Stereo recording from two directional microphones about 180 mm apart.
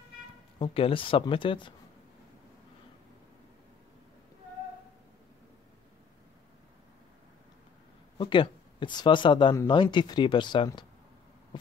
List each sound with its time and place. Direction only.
0.6 s speech: 30° left (ahead or behind)
8.2 s speech: 30° left (ahead or behind)